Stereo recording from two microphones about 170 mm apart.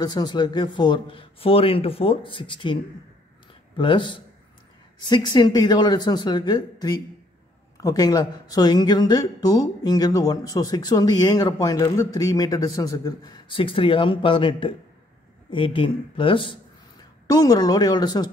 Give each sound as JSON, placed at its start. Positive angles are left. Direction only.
{"t": 0.0, "sound": "a woman's voice", "side_deg": 25}